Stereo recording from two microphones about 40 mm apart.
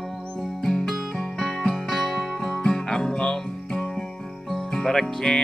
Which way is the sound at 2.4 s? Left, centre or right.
Centre.